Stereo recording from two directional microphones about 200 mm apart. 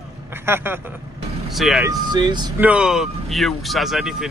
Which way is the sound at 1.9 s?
20° right (ahead or behind).